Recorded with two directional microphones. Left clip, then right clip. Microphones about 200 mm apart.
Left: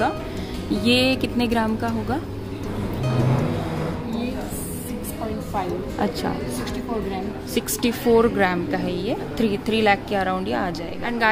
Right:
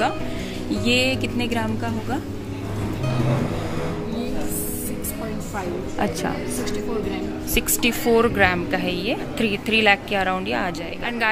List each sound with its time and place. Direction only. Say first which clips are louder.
0.8 s speech: left 1 dB; 20° left (ahead or behind)
7.8 s a woman's voice: left 1 dB; 5° left (ahead or behind)